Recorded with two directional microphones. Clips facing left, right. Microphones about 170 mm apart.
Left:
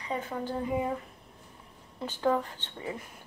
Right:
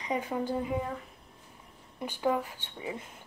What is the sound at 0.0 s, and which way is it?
Speech, 15° right (ahead or behind).